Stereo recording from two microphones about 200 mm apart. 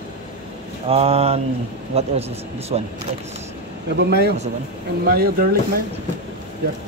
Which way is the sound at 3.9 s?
55° right (ahead or behind).